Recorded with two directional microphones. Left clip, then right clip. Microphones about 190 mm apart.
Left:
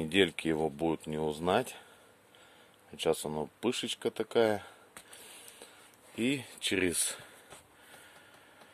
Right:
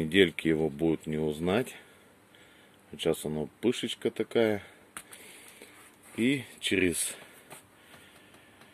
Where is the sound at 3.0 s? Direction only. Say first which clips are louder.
Right 1 dB; 15° left (ahead or behind).